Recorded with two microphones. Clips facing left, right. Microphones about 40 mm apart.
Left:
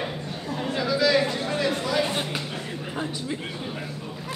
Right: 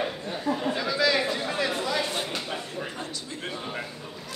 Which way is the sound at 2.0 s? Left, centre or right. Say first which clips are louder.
Left 2 dB; centre.